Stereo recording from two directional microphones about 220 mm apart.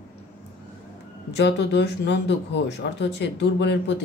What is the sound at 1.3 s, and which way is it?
Speech, 50° left (ahead or behind).